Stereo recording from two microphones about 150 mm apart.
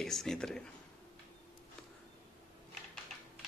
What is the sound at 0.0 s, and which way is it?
Speech, 5° left (ahead or behind).